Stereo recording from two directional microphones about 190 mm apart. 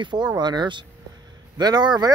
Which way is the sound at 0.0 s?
25° right (ahead or behind).